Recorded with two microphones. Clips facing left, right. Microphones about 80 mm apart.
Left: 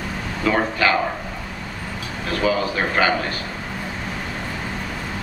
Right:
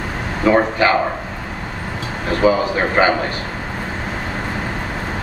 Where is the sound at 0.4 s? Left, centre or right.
Right.